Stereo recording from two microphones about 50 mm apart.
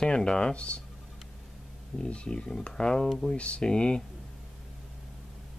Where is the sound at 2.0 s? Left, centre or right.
Centre.